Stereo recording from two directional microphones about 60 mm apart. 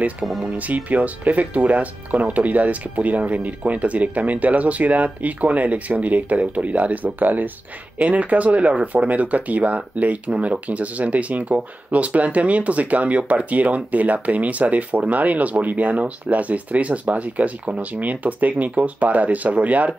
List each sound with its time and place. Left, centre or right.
0.2 s speech: centre
0.6 s speech: right